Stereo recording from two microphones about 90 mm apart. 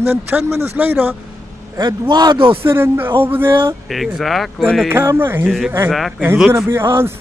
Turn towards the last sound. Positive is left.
turn(degrees=-25)  # may be behind; listen again after turning